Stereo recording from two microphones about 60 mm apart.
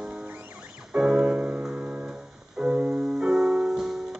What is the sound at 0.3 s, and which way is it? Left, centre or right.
Music, right.